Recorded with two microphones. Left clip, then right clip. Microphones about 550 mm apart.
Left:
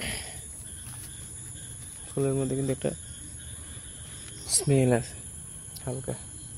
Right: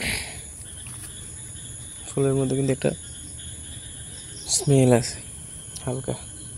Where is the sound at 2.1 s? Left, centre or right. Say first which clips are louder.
Right 5 dB; left.